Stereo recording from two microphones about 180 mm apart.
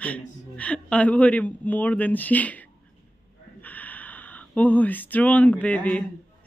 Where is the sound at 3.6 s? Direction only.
10° left (ahead or behind).